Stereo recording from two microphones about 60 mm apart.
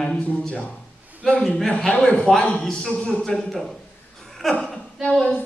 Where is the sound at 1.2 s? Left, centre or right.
Centre.